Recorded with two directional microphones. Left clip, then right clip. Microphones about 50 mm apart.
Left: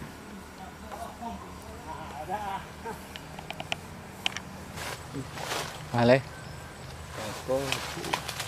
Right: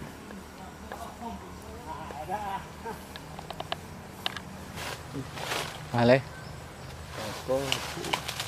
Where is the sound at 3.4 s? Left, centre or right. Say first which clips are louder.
Left 1 dB; left.